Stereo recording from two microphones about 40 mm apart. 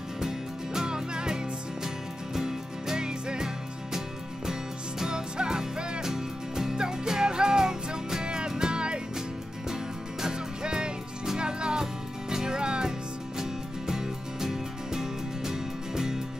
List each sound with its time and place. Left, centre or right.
0.2 s music: centre
4.5 s music: centre
10.2 s music: centre